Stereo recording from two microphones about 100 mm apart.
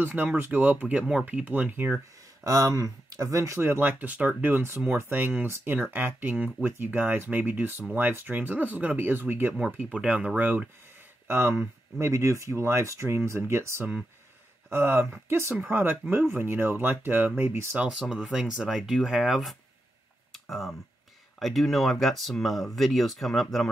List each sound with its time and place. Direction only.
0.0 s speech: 20° right (ahead or behind)
2.4 s speech: 35° right (ahead or behind)
17.7 s speech: 5° right (ahead or behind)